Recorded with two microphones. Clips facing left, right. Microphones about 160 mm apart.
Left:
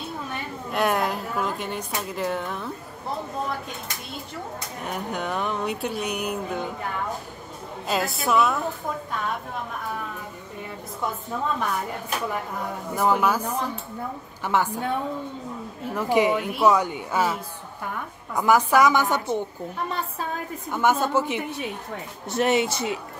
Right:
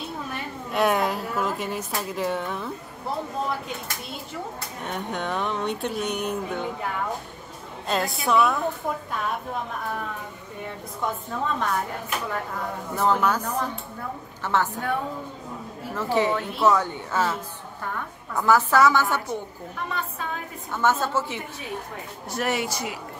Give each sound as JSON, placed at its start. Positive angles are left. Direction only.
{"t": 0.7, "sound": "speech", "side_deg": 0}
{"t": 4.8, "sound": "speech", "side_deg": 5}
{"t": 7.9, "sound": "speech", "side_deg": 0}
{"t": 12.9, "sound": "a woman's voice", "side_deg": 10}
{"t": 15.9, "sound": "a woman's voice", "side_deg": 15}
{"t": 20.7, "sound": "a woman's voice", "side_deg": 15}